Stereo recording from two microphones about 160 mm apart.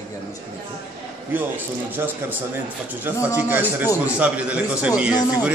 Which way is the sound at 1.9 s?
10° right (ahead or behind).